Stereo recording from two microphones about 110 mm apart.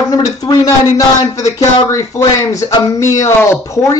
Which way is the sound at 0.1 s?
35° left (ahead or behind).